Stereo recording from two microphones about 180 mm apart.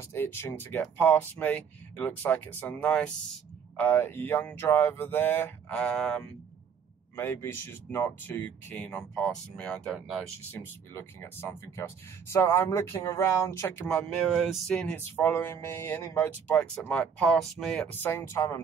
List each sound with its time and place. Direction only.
0.1 s speech: 15° left (ahead or behind)
10.5 s speech: 15° left (ahead or behind)